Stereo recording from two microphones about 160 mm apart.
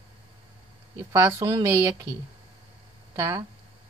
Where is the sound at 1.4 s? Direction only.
30° right (ahead or behind).